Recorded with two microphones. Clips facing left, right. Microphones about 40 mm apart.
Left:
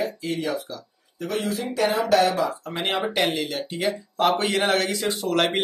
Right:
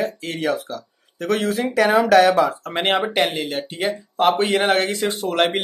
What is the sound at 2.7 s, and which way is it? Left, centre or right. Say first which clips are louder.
Speech: right 6 dB; right.